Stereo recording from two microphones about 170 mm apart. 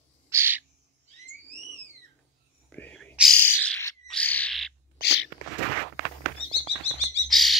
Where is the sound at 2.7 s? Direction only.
10° left (ahead or behind).